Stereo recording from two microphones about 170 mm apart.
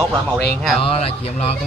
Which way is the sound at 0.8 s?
35° left (ahead or behind).